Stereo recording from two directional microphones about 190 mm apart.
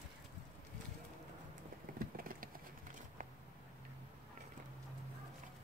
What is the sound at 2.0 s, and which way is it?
Vehicle, 50° right (ahead or behind).